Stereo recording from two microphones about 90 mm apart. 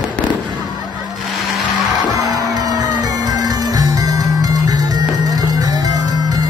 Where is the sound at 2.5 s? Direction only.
45° right (ahead or behind).